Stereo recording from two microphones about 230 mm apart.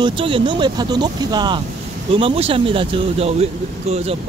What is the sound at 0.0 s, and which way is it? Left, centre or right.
Speech, right.